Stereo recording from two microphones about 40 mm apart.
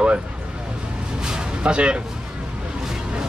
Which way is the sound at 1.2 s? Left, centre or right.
Right.